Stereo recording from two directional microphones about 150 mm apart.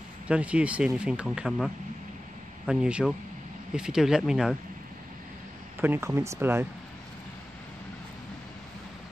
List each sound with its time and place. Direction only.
0.3 s speech: 10° right (ahead or behind)
5.8 s speech: 15° right (ahead or behind)